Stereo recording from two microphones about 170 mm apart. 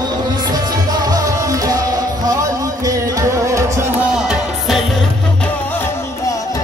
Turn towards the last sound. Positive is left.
turn(degrees=0)  # may be behind; listen again after turning